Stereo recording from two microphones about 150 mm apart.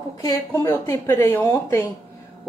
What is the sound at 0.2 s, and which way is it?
A woman's voice, 20° left (ahead or behind).